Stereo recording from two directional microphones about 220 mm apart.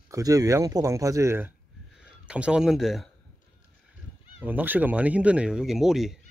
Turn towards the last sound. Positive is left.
turn(degrees=0)  # may be behind; listen again after turning